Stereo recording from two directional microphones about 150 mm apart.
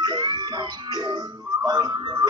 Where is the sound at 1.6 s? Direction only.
25° right (ahead or behind).